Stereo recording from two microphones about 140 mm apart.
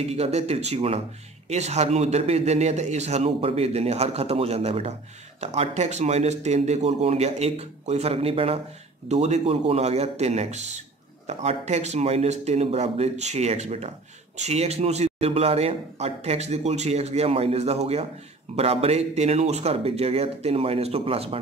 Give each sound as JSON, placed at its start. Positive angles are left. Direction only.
{"t": 0.0, "sound": "speech", "side_deg": -50}